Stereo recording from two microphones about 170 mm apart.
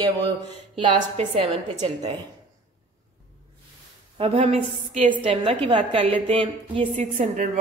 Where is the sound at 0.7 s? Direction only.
35° right (ahead or behind).